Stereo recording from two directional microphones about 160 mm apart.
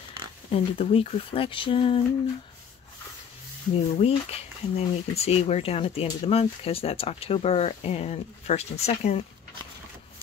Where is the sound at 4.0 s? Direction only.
40° left (ahead or behind).